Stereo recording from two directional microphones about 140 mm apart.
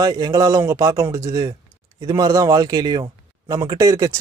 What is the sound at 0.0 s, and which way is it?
Speech, 25° right (ahead or behind).